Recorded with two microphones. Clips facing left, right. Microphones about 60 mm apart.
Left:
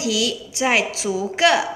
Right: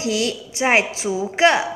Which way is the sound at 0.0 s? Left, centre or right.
Right.